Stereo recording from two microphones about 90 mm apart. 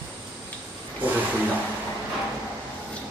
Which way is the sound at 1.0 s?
20° right (ahead or behind).